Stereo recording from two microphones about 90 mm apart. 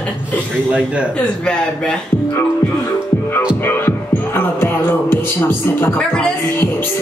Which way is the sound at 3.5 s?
25° left (ahead or behind).